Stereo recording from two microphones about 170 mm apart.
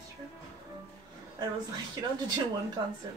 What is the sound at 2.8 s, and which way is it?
Speech, 25° right (ahead or behind).